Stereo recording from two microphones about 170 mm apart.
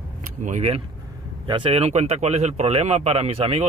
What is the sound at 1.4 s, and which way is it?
Speech, 30° right (ahead or behind).